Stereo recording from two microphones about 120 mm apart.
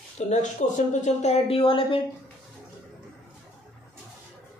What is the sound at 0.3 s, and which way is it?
Speech, 85° left.